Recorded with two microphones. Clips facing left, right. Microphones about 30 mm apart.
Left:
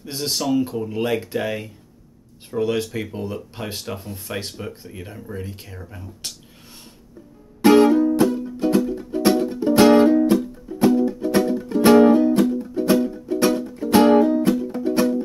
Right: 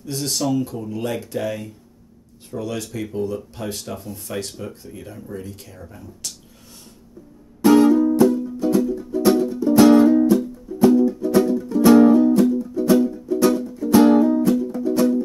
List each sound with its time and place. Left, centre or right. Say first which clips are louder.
0.0 s speech: right 1 dB; left
7.6 s music: even; left